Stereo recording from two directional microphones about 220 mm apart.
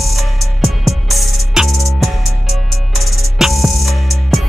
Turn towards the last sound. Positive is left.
turn(degrees=0)  # may be behind; listen again after turning